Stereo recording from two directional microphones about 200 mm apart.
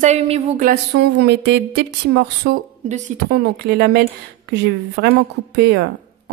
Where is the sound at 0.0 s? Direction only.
35° right (ahead or behind).